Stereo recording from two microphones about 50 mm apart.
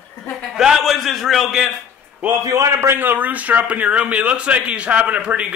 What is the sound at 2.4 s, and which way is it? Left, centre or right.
Speech, right.